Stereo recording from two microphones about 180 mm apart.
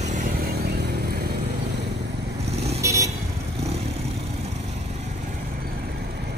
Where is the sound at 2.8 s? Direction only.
15° right (ahead or behind).